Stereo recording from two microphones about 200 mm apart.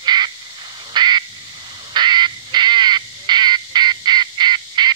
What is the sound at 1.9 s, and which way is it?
Duck, 20° right (ahead or behind).